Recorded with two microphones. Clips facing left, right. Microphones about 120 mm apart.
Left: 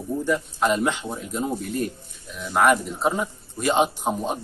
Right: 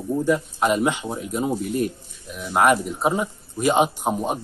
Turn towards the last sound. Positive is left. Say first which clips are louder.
# right 2 dB
turn(degrees=-10)  # may be behind; listen again after turning